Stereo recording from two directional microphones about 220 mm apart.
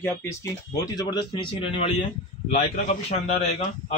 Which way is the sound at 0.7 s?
20° left (ahead or behind).